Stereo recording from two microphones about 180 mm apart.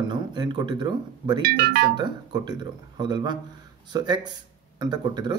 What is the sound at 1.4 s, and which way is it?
Speech, 60° right (ahead or behind).